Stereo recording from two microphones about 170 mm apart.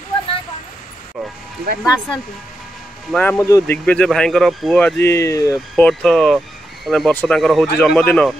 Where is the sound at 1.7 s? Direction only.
60° right (ahead or behind).